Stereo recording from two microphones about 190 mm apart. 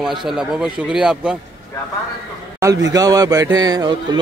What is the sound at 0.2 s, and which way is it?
Speech, centre (ahead or behind).